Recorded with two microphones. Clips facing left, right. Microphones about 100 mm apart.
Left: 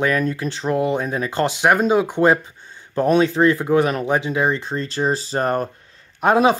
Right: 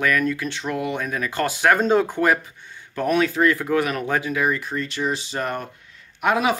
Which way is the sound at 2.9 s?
30° left (ahead or behind).